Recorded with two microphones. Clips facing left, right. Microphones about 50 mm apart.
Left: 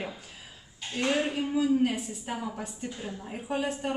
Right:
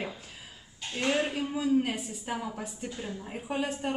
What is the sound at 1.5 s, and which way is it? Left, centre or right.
A woman's voice, centre.